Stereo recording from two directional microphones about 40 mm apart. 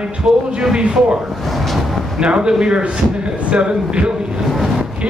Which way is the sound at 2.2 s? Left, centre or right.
Right.